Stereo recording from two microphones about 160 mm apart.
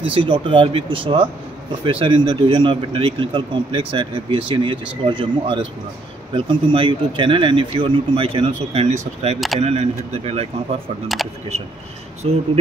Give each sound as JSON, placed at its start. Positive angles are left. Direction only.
{"t": 0.1, "sound": "a man's voice", "side_deg": -30}
{"t": 12.2, "sound": "a man's voice", "side_deg": -40}